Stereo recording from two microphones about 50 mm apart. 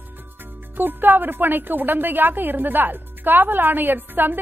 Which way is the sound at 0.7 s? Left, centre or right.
Right.